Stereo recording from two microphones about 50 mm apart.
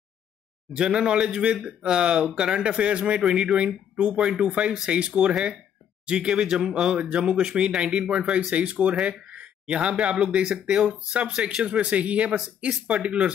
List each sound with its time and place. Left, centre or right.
0.7 s a man's voice: centre
3.2 s a man's voice: centre
3.5 s speech: right
9.3 s a sound: right
10.2 s a man's voice: centre
10.9 s speech: right